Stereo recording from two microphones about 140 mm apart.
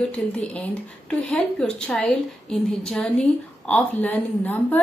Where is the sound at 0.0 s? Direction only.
10° left (ahead or behind).